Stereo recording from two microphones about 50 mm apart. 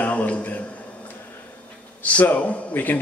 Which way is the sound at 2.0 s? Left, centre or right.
Left.